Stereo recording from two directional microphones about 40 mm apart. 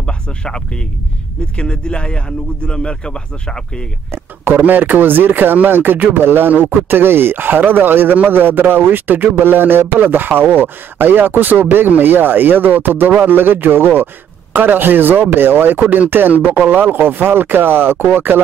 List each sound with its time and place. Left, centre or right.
0.0 s a sound: left
1.6 s a man's voice: left
4.6 s speech: right
14.5 s speech: right
15.8 s speech: right
16.1 s speech: right